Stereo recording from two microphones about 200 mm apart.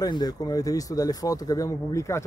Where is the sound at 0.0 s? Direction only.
20° left (ahead or behind).